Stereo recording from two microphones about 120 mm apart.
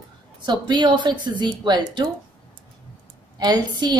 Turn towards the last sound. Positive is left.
turn(degrees=-35)  # may be behind; listen again after turning